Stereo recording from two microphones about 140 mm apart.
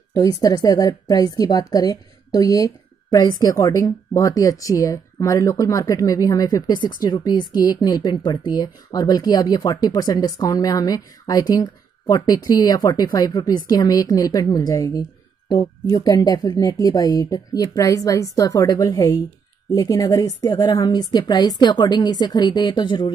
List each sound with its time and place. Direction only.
0.1 s a woman's voice: 25° left (ahead or behind)